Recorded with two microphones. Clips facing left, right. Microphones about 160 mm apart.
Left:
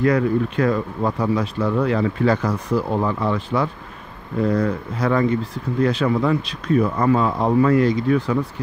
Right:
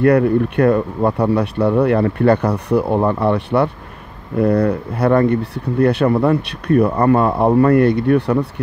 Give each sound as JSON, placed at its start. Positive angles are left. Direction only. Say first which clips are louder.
{"t": 0.0, "sound": "speech", "louder": "right 5 dB", "side_deg": -60}